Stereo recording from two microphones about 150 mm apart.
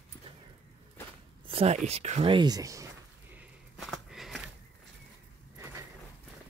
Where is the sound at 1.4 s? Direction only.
40° right (ahead or behind).